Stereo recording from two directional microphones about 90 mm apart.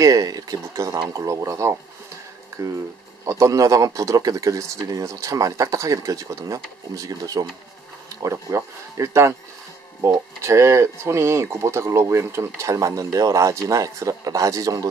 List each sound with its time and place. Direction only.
0.0 s speech: 40° right (ahead or behind)